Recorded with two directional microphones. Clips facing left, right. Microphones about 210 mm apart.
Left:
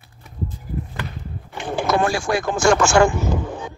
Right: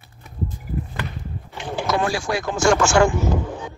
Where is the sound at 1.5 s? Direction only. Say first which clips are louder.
Left 3 dB; 50° left (ahead or behind).